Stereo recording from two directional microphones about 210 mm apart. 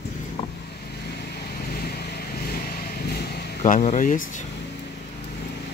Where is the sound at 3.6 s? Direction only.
30° left (ahead or behind).